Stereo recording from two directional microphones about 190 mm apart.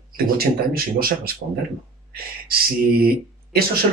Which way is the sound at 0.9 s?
50° right (ahead or behind).